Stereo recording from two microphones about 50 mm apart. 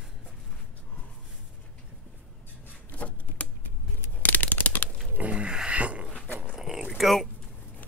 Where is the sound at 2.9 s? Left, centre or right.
Left.